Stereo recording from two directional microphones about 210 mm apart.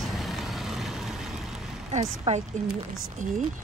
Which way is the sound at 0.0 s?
Centre (ahead or behind).